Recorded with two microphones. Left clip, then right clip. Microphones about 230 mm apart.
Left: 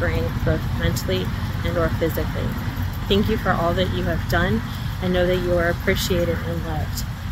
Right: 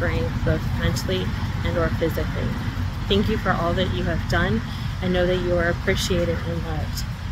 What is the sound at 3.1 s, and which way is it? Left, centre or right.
Speech, centre.